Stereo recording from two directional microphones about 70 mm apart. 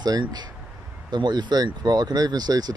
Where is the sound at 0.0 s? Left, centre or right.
Right.